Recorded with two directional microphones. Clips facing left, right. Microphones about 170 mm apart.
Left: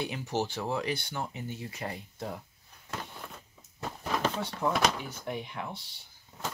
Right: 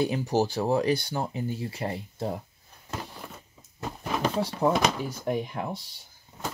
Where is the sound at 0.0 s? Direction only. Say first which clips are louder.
Right 7 dB; 35° right (ahead or behind).